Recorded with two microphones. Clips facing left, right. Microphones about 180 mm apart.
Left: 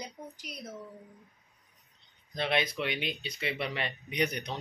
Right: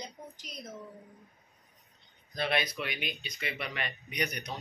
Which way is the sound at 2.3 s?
20° left (ahead or behind).